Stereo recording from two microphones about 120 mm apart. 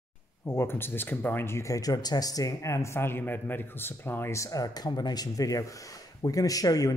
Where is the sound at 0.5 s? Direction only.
20° left (ahead or behind).